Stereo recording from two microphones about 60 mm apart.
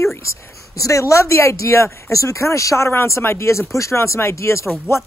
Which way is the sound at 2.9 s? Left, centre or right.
Left.